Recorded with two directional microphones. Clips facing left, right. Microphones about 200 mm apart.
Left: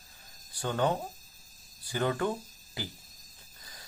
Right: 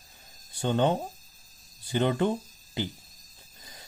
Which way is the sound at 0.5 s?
25° right (ahead or behind).